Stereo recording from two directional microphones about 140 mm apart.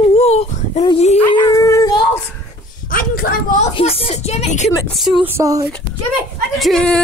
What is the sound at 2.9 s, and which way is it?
Speech, 90° left.